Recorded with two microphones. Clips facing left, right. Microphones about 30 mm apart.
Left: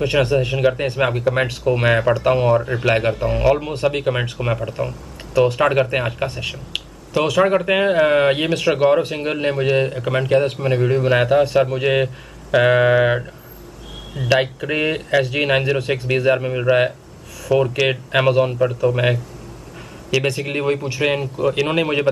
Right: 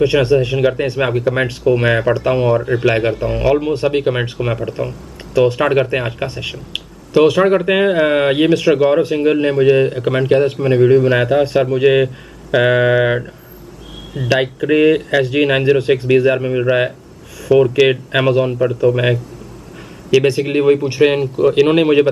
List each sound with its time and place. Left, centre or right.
0.0 s speech: right
0.6 s speech: centre
7.4 s speech: centre
9.8 s speech: centre